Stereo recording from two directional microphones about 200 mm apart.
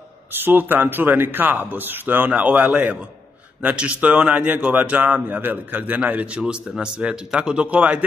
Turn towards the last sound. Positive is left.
turn(degrees=-5)  # may be behind; listen again after turning